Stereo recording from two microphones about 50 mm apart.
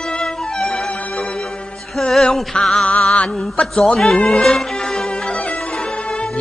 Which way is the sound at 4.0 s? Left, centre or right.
Centre.